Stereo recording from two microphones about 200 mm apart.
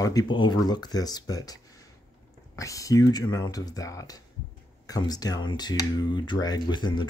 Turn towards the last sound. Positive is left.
turn(degrees=25)  # may be behind; listen again after turning